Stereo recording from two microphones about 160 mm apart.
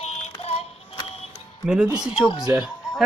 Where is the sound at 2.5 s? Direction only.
5° right (ahead or behind).